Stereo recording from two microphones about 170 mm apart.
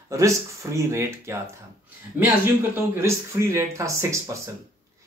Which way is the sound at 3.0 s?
15° right (ahead or behind).